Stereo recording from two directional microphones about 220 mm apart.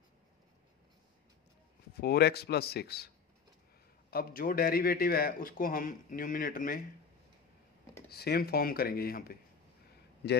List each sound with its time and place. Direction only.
2.0 s speech: 45° left (ahead or behind)
4.1 s a man's voice: 40° left (ahead or behind)
8.1 s speech: 45° left (ahead or behind)